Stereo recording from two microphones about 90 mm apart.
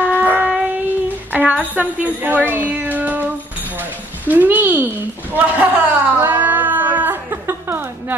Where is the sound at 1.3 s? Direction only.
20° right (ahead or behind).